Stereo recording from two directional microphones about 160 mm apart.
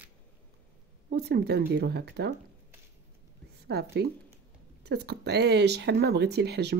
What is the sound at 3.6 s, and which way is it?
Speech, 90° right.